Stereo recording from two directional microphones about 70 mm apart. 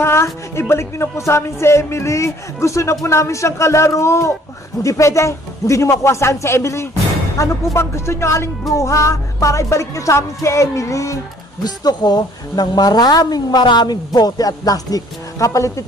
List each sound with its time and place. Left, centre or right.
0.0 s speech: left
11.6 s speech: left